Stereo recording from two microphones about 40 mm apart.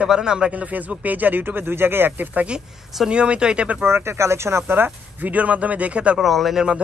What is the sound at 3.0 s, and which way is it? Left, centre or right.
Speech, right.